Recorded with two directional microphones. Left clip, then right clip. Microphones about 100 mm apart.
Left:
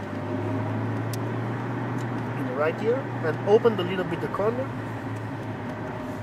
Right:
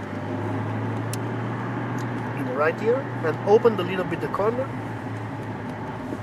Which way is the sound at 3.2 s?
15° right (ahead or behind).